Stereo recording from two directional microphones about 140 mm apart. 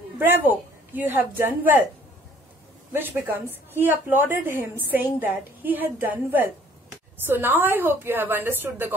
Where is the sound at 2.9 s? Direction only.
15° right (ahead or behind).